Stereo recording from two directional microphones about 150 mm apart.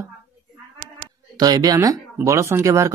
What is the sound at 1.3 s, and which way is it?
Speech, 25° right (ahead or behind).